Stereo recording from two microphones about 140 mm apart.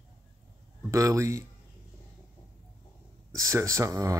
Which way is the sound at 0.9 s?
20° right (ahead or behind).